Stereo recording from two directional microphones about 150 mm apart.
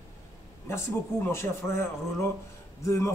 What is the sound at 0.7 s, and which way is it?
A man's voice, 15° left (ahead or behind).